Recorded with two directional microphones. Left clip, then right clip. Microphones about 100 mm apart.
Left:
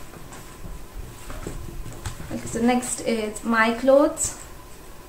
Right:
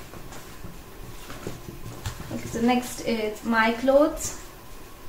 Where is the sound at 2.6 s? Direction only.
45° left (ahead or behind).